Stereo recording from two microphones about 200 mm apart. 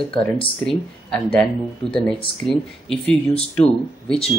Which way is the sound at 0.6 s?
Centre (ahead or behind).